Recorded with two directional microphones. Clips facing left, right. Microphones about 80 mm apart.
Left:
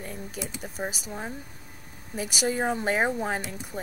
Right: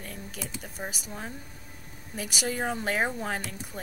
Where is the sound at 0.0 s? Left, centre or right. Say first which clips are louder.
Left 4 dB; centre.